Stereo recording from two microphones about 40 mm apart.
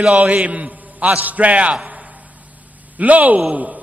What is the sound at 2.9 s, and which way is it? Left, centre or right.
Speech, right.